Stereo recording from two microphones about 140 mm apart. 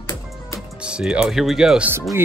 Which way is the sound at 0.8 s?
5° right (ahead or behind).